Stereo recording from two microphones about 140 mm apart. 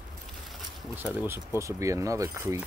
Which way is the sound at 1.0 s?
10° right (ahead or behind).